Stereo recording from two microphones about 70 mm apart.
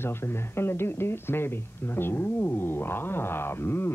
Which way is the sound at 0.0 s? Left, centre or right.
Left.